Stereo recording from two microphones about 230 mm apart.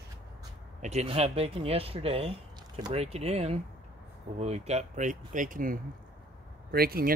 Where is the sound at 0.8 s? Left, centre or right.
Right.